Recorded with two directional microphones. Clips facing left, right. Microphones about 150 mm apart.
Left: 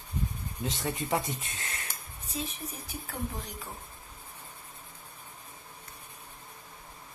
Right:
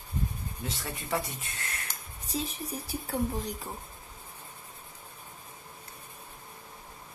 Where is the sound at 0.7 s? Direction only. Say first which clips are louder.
Left 4 dB; 20° left (ahead or behind).